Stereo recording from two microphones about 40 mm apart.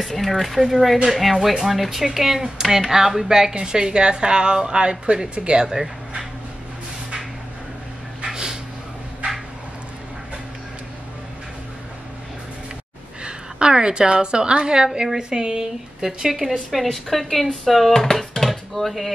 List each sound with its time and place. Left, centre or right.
0.0 s a woman's voice: centre; by 5.8 s right
8.3 s dog: centre
13.2 s a woman's voice: right; by 16.5 s centre
16.7 s speech: centre
18.3 s dishes: centre